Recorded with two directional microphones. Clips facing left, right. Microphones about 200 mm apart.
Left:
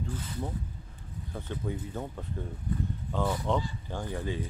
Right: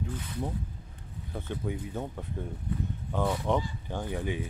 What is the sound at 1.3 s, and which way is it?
Speech, 15° right (ahead or behind).